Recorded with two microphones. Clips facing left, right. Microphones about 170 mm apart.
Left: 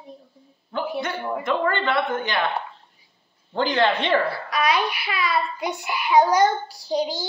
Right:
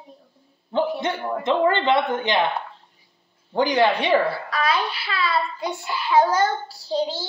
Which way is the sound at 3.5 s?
15° right (ahead or behind).